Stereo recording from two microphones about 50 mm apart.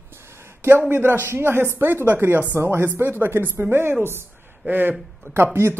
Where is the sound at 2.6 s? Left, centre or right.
Right.